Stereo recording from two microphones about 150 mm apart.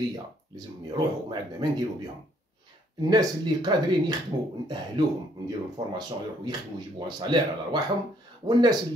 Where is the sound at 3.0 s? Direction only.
25° right (ahead or behind).